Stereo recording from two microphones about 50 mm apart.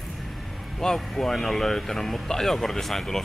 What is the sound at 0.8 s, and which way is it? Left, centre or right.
Speech, centre.